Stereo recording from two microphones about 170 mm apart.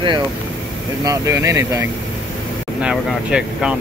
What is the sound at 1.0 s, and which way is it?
Speech, 20° right (ahead or behind).